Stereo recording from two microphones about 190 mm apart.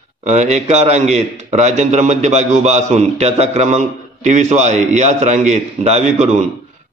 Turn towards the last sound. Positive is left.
turn(degrees=-40)  # may be behind; listen again after turning